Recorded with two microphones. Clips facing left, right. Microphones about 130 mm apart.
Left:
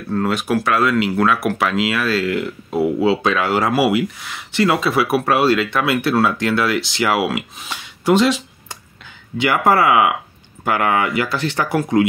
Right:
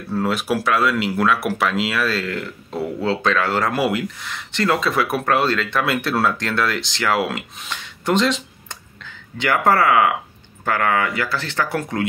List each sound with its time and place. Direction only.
0.1 s speech: centre (ahead or behind); by 12.1 s 15° left (ahead or behind)